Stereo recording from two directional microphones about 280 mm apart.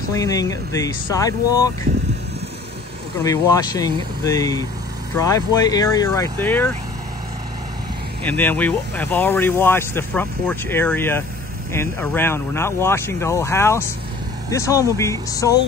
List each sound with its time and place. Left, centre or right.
0.1 s speech: centre
3.2 s speech: centre
8.3 s speech: centre